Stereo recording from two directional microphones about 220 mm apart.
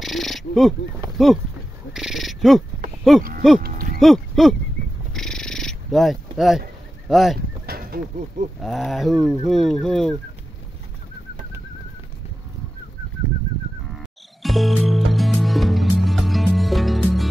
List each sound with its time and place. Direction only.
0.0 s owl: centre (ahead or behind)
1.1 s speech: centre (ahead or behind)
3.0 s a sound: centre (ahead or behind)
3.6 s cattle: 45° right (ahead or behind)
4.0 s a sound: centre (ahead or behind)
5.1 s owl: 5° left (ahead or behind)
7.1 s speech: centre (ahead or behind)
7.6 s speech: 45° right (ahead or behind)
8.6 s speech: centre (ahead or behind)
14.4 s music: centre (ahead or behind)